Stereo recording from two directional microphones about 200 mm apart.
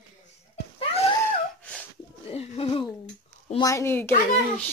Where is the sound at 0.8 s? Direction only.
30° left (ahead or behind).